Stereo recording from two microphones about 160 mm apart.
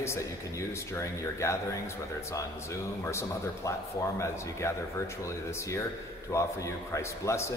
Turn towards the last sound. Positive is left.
turn(degrees=15)  # may be behind; listen again after turning